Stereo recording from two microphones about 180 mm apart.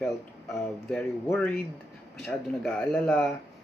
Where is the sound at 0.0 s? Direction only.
5° left (ahead or behind).